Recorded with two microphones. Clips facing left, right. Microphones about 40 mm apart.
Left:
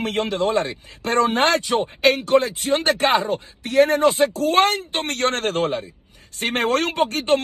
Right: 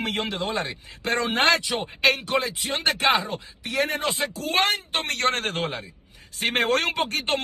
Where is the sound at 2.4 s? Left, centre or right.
Left.